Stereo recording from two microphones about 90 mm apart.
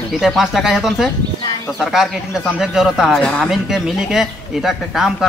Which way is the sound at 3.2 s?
10° left (ahead or behind).